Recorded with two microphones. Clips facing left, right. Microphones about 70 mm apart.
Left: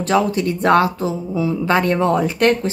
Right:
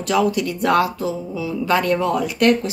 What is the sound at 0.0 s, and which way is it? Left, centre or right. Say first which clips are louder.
Speech: left 2 dB; left.